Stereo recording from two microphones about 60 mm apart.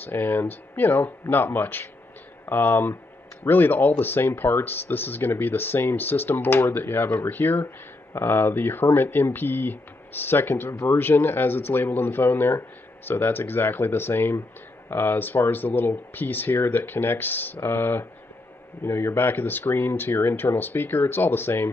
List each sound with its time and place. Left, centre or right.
0.0 s speech: left